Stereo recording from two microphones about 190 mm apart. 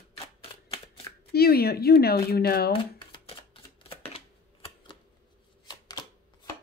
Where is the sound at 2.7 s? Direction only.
30° left (ahead or behind).